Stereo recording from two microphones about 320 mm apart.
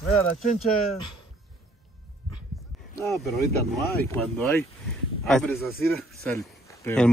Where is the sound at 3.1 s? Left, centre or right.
Centre.